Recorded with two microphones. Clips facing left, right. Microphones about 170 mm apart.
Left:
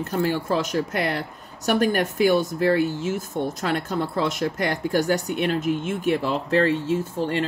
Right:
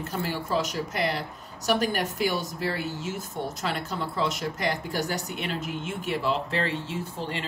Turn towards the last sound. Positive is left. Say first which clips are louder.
# left 9 dB
turn(degrees=50)  # may be behind; listen again after turning